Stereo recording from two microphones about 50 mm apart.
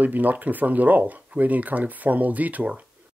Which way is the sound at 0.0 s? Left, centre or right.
Right.